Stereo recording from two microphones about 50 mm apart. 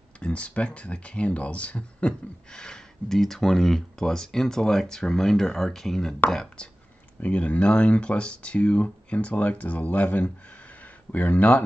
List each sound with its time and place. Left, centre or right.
0.2 s speech: left